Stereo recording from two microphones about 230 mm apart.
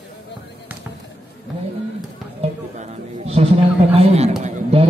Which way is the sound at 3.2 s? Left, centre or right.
Right.